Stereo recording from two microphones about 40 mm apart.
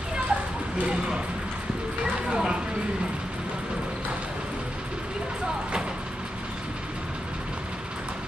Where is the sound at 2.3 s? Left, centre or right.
Centre.